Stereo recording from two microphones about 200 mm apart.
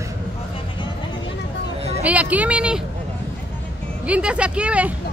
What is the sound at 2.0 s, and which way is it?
Speech, 5° right (ahead or behind).